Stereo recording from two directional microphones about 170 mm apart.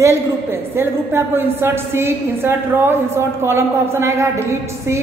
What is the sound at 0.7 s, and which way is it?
A woman's voice, 15° right (ahead or behind).